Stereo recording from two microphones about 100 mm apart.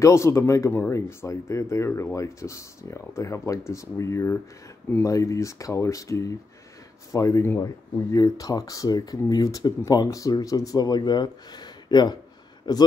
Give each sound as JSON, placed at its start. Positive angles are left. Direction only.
{"t": 0.0, "sound": "speech", "side_deg": 30}